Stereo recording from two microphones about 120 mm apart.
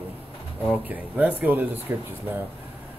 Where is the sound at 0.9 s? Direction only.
15° right (ahead or behind).